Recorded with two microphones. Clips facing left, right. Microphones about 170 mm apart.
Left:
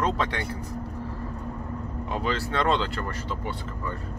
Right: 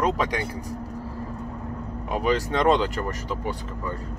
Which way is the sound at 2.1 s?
15° right (ahead or behind).